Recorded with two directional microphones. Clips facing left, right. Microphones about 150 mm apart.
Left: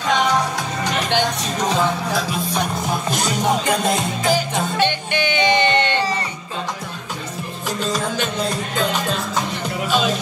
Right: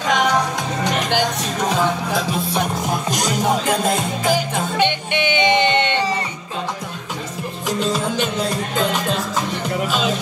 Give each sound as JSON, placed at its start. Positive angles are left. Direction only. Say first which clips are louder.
{"t": 0.1, "sound": "music", "louder": "even", "side_deg": -15}
{"t": 1.1, "sound": "speech", "louder": "even", "side_deg": -10}
{"t": 2.1, "sound": "music", "louder": "right 1 dB", "side_deg": -20}
{"t": 4.7, "sound": "music", "louder": "right 2 dB", "side_deg": -20}
{"t": 8.0, "sound": "speech", "louder": "right 1 dB", "side_deg": -10}